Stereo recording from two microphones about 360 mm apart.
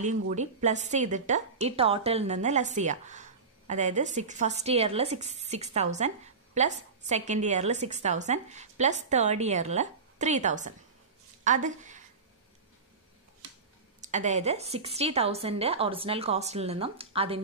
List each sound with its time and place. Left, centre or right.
0.3 s a woman's voice: centre
14.0 s a woman's voice: centre